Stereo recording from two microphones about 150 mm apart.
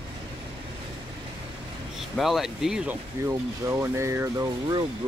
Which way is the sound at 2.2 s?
Centre (ahead or behind).